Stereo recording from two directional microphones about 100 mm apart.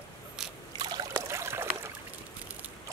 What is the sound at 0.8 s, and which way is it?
Trickle, 45° right (ahead or behind).